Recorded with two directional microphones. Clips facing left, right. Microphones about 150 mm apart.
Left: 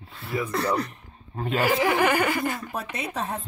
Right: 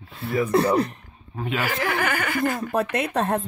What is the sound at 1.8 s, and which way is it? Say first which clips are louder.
Chuckle: left 4 dB; 25° left (ahead or behind).